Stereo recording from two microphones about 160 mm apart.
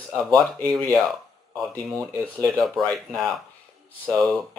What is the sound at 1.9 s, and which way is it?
Speech, centre (ahead or behind).